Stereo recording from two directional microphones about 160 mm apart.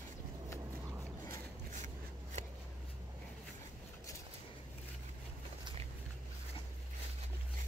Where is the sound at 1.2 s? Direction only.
55° right (ahead or behind).